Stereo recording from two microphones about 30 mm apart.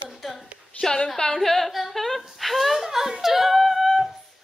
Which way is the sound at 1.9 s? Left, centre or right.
Centre.